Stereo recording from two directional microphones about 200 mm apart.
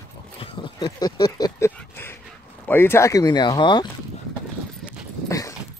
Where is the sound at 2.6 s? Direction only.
10° left (ahead or behind).